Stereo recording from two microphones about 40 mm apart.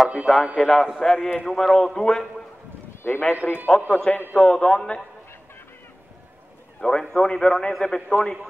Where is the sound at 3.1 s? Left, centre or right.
Left.